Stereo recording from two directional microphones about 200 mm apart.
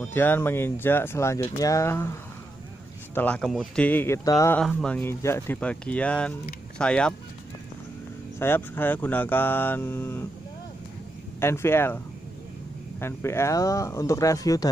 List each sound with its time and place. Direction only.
0.0 s speech: 10° left (ahead or behind)
3.2 s speech: 5° left (ahead or behind)
4.6 s speech: 5° left (ahead or behind)
8.4 s speech: 10° left (ahead or behind)
11.3 s speech: 10° left (ahead or behind)
13.0 s speech: 10° left (ahead or behind)